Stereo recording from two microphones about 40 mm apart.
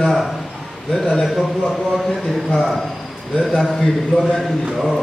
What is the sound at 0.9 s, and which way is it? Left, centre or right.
A man's voice, centre.